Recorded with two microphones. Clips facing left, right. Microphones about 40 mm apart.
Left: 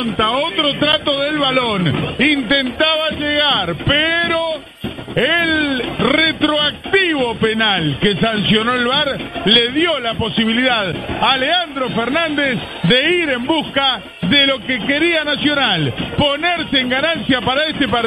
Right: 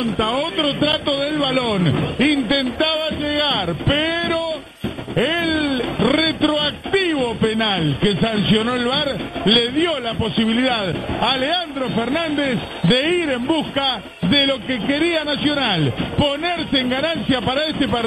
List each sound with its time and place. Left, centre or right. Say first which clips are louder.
0.0 s a man's voice: left 3 dB; centre